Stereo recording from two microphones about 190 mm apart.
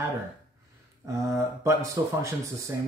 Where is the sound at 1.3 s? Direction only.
15° right (ahead or behind).